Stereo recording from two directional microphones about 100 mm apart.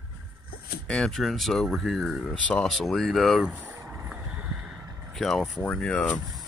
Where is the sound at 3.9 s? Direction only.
15° right (ahead or behind).